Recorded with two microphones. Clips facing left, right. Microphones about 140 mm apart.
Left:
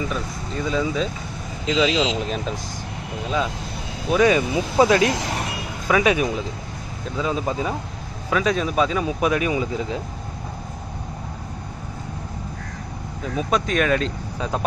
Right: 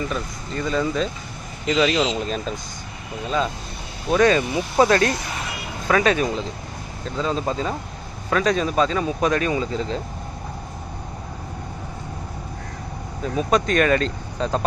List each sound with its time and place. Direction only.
0.1 s speech: 5° left (ahead or behind)
1.9 s speech: 90° left
4.1 s speech: 10° left (ahead or behind)
13.3 s speech: centre (ahead or behind)